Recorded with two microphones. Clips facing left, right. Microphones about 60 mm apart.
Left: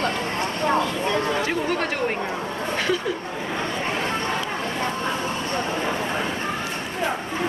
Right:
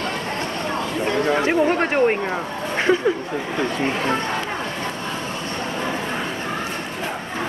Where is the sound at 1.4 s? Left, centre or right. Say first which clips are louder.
Right 6 dB; right.